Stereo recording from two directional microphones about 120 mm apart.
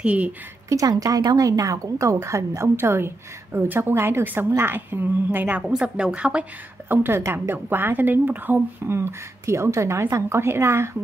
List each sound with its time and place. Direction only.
0.0 s a woman's voice: 10° right (ahead or behind)
0.7 s a woman's voice: 30° right (ahead or behind)